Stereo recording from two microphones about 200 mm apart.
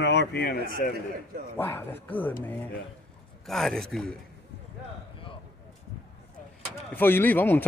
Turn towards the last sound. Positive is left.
turn(degrees=10)  # may be behind; listen again after turning